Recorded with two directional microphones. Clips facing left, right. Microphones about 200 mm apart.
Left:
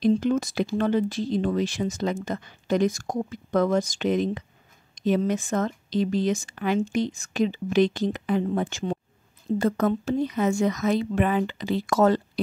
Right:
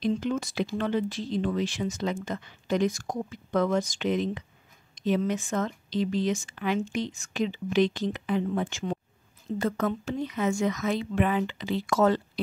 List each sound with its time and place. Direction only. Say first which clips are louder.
0.0 s speech: left 6 dB; 45° left (ahead or behind)